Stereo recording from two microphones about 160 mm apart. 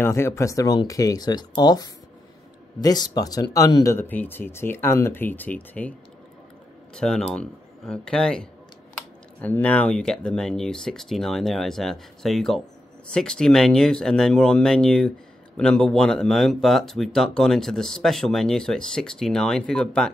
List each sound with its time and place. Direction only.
0.0 s speech: 15° left (ahead or behind)
7.0 s speech: 5° left (ahead or behind)